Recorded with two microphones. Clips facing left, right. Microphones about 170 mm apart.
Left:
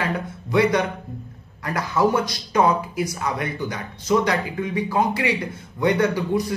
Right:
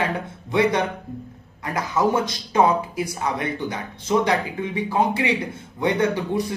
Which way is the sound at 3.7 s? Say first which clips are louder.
Left 2 dB; 25° right (ahead or behind).